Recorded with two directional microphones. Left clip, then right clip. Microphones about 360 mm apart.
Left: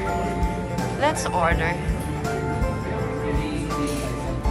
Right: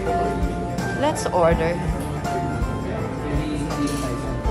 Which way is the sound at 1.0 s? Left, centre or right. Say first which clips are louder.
Right 2 dB; centre.